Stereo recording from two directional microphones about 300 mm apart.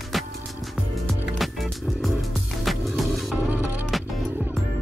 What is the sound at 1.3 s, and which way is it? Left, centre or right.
Music, centre.